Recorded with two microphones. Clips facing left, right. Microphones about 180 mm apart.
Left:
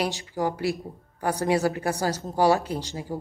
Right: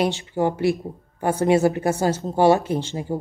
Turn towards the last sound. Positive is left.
turn(degrees=-25)  # may be behind; listen again after turning